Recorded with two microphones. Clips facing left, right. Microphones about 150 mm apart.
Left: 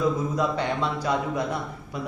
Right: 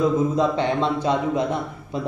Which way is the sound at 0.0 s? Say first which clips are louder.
Right 5 dB; 25° right (ahead or behind).